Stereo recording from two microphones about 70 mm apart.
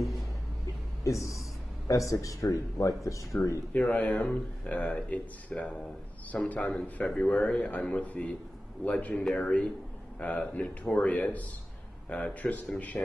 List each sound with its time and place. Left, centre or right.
1.0 s speech: left
3.7 s a man's voice: centre